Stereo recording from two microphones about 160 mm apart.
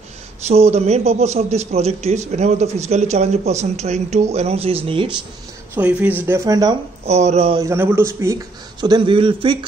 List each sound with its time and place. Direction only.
0.5 s a man's voice: 40° right (ahead or behind)
5.8 s speech: 10° right (ahead or behind); by 6.8 s 25° right (ahead or behind)
7.1 s a man's voice: 45° right (ahead or behind)
7.5 s speech: 15° right (ahead or behind); by 9.7 s 30° right (ahead or behind)